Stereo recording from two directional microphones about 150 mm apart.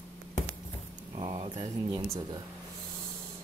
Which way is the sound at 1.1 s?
40° right (ahead or behind).